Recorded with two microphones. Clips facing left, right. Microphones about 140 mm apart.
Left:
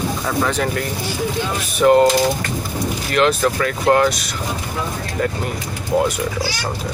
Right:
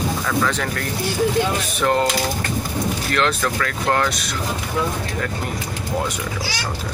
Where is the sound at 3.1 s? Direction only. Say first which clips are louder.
Left 6 dB; 15° left (ahead or behind).